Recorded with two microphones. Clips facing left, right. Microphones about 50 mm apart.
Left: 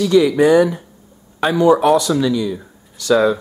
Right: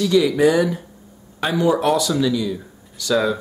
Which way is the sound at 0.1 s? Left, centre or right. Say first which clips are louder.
Left 4 dB; left.